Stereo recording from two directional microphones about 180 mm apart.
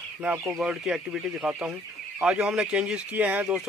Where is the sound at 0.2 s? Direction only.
10° right (ahead or behind).